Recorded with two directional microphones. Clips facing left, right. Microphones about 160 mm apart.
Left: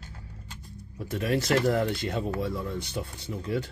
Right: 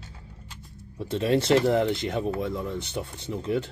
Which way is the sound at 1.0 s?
25° right (ahead or behind).